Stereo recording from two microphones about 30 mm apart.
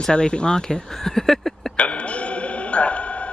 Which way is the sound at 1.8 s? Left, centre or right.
Left.